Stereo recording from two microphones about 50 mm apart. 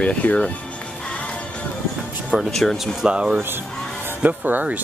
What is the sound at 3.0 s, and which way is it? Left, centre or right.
Speech, centre.